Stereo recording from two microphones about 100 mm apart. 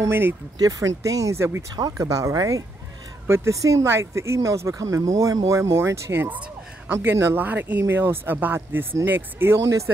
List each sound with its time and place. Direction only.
0.0 s speech: 20° right (ahead or behind)
0.6 s speech: 35° right (ahead or behind)